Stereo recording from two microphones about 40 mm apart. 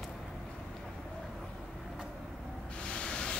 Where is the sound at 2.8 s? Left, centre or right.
Left.